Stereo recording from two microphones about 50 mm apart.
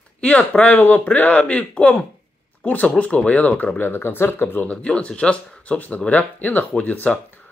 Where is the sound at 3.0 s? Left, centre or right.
Left.